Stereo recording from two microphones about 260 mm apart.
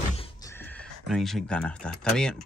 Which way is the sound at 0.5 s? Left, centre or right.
Centre.